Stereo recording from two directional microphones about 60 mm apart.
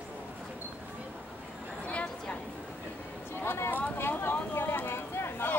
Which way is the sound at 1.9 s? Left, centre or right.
Left.